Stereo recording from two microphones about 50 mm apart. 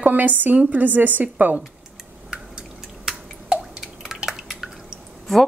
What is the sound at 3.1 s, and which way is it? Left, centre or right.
Drip, centre.